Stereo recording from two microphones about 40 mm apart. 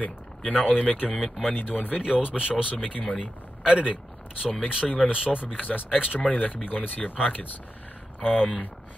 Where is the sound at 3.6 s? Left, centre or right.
Right.